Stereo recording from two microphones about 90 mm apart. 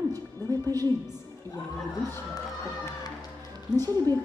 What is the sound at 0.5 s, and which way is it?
Music, 45° right (ahead or behind).